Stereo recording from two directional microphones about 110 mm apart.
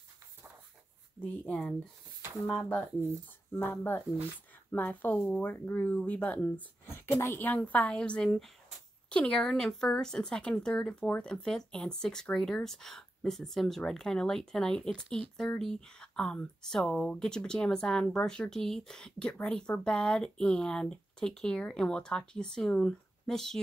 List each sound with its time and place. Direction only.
1.2 s speech: 10° left (ahead or behind)